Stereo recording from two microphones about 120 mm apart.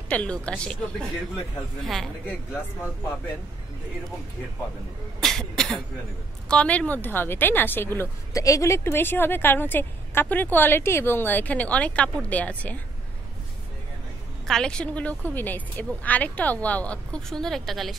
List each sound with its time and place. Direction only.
0.1 s a woman's voice: 10° left (ahead or behind)
1.8 s cough: centre (ahead or behind)
5.2 s cough: 5° left (ahead or behind)
6.5 s a woman's voice: 10° left (ahead or behind)
14.5 s a woman's voice: 5° left (ahead or behind)